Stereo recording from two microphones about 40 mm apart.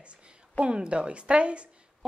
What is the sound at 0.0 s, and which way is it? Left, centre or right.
A woman's voice, right.